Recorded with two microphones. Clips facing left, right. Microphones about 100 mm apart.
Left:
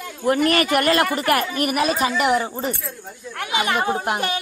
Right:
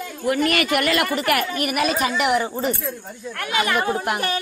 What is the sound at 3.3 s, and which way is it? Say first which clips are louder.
Speech: even; 20° left (ahead or behind).